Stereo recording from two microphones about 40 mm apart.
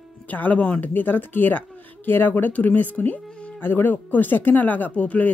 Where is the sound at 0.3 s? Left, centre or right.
Left.